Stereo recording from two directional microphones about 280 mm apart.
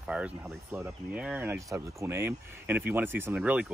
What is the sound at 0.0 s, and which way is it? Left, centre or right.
Speech, centre.